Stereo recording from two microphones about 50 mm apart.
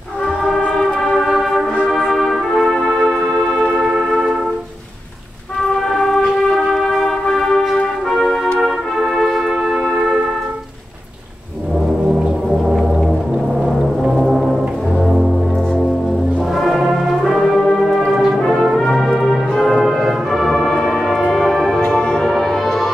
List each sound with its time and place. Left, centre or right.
0.7 s music: centre
3.6 s music: centre
5.8 s music: centre
9.8 s music: centre
14.0 s brass instrument: centre
16.5 s brass instrument: centre
17.4 s music: centre
21.8 s music: centre
22.3 s music: centre